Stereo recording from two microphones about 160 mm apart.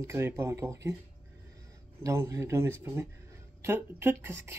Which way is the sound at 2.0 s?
20° right (ahead or behind).